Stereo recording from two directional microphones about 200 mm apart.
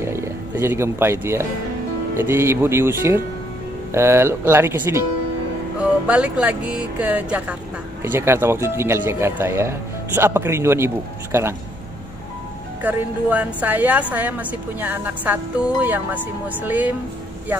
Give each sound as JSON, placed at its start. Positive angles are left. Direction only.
{"t": 0.0, "sound": "roaring cats", "side_deg": -15}
{"t": 2.1, "sound": "a woman's voice", "side_deg": -10}
{"t": 12.8, "sound": "a woman's voice", "side_deg": -10}